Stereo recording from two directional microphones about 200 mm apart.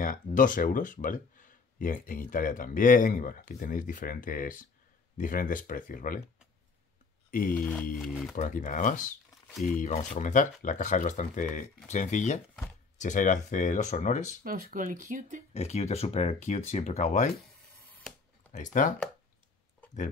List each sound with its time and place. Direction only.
0.0 s speech: 45° left (ahead or behind)
7.2 s speech: 45° left (ahead or behind)
7.5 s speech: 5° left (ahead or behind)
8.4 s speech: 40° left (ahead or behind)
14.4 s speech: 45° right (ahead or behind)
15.5 s speech: 35° left (ahead or behind)
18.5 s speech: 40° left (ahead or behind)